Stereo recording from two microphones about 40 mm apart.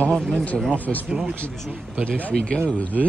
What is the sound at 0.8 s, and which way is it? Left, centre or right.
Speech, left.